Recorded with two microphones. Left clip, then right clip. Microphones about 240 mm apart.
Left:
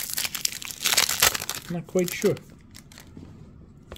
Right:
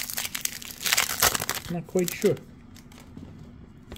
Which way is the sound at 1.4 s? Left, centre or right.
Centre.